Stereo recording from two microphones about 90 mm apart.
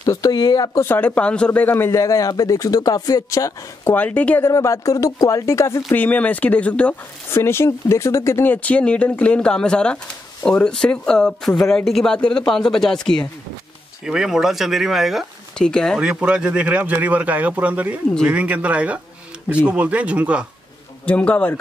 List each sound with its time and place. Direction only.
0.0 s speech: 45° left (ahead or behind)
0.7 s a man's voice: 25° left (ahead or behind)
3.9 s speech: 15° left (ahead or behind)
4.5 s a man's voice: 35° left (ahead or behind)
5.9 s speech: 20° left (ahead or behind)
7.2 s speech: 30° left (ahead or behind)
8.6 s speech: 15° left (ahead or behind)
14.0 s speech: 5° right (ahead or behind)
15.5 s speech: 10° left (ahead or behind)
16.0 s speech: 10° right (ahead or behind)
21.1 s speech: 15° left (ahead or behind)